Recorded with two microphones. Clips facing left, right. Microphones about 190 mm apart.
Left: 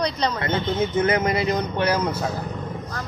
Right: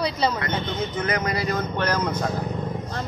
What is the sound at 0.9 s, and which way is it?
Speech, 25° left (ahead or behind).